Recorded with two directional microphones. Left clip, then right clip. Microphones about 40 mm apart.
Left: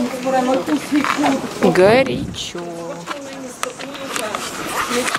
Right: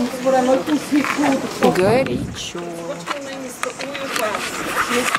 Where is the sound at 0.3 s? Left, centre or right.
Left.